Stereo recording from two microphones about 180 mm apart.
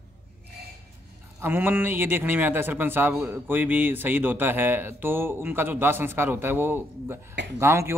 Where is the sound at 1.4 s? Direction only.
10° right (ahead or behind).